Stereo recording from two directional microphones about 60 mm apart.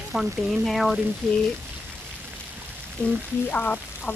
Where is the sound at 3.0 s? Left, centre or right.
Left.